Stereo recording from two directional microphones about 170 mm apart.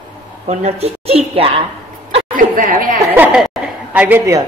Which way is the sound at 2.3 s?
55° right (ahead or behind).